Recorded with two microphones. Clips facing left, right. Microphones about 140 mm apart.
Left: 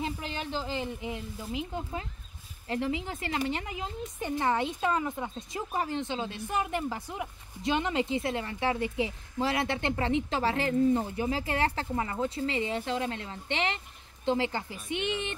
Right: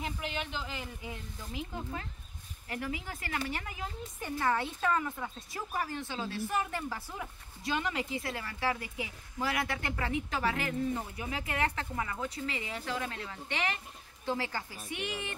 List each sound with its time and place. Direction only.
0.0 s speech: 35° left (ahead or behind)